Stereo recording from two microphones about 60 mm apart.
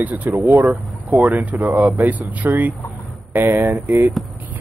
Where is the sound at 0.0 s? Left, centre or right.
Right.